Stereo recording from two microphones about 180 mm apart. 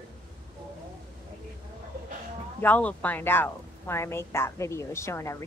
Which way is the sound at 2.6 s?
10° left (ahead or behind).